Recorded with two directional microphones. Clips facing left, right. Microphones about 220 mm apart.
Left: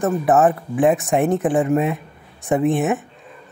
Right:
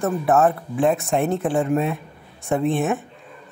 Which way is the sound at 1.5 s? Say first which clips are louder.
Left 3 dB; 5° left (ahead or behind).